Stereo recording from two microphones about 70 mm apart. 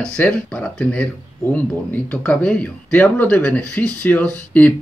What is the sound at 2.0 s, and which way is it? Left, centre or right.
Speech, centre.